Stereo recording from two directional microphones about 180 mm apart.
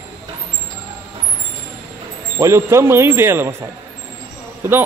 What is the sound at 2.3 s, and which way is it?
Speech, 15° right (ahead or behind).